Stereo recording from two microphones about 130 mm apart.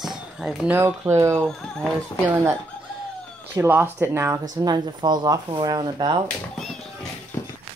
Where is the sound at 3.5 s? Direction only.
15° right (ahead or behind).